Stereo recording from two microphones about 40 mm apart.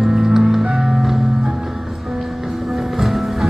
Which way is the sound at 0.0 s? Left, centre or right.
Centre.